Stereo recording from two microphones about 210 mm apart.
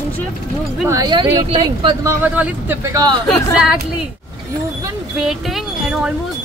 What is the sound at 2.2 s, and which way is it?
Speech, 5° right (ahead or behind).